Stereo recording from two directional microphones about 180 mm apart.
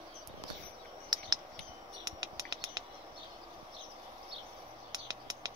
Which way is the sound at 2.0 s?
20° right (ahead or behind).